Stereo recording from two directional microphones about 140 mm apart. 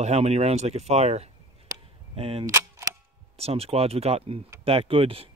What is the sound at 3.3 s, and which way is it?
Speech, 45° right (ahead or behind).